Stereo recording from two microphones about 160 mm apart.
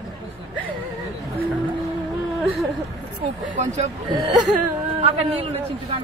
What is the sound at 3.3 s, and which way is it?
Speech, 45° right (ahead or behind).